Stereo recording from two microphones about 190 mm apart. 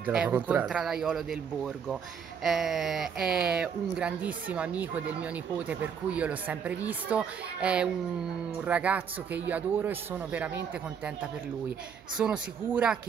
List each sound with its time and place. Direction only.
0.0 s speech: 5° right (ahead or behind)
12.2 s speech: 5° right (ahead or behind)